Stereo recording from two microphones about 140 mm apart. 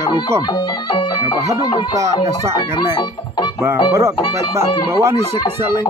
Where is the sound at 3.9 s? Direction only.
20° right (ahead or behind).